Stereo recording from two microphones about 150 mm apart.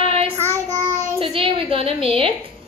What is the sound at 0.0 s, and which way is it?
Child singing, 40° right (ahead or behind).